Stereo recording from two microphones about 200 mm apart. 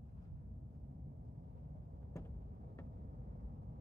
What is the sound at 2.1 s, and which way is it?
Vehicle, 15° left (ahead or behind).